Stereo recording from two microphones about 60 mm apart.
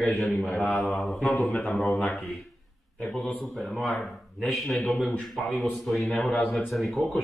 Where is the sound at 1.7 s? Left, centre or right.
Centre.